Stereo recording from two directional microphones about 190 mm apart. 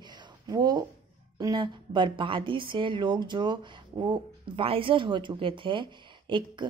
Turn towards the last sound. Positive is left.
turn(degrees=-25)  # may be behind; listen again after turning